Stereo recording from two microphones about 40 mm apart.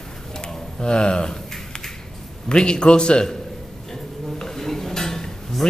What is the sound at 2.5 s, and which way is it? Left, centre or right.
Speech, left.